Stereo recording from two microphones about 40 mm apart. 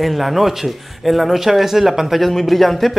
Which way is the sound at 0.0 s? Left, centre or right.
Centre.